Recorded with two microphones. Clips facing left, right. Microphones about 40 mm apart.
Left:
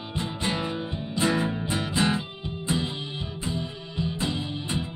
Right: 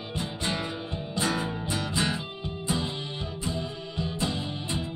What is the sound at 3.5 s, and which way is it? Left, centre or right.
Music, centre.